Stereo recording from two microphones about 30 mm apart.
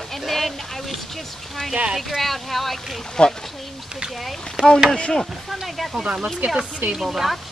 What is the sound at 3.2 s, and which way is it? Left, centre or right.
Speech, left.